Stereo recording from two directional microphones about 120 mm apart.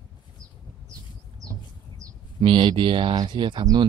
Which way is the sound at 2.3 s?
50° right (ahead or behind).